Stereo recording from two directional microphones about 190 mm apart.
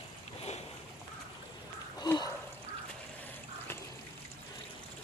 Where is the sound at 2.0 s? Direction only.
20° left (ahead or behind).